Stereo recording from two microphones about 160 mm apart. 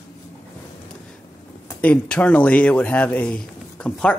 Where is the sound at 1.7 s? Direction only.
10° left (ahead or behind).